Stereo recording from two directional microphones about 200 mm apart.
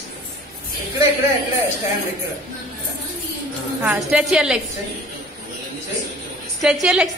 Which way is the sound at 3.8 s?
5° right (ahead or behind).